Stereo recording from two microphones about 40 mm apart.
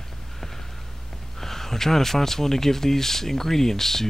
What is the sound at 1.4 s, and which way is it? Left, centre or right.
Speech, centre.